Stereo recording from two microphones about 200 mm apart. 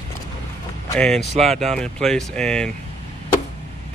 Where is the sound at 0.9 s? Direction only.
5° left (ahead or behind).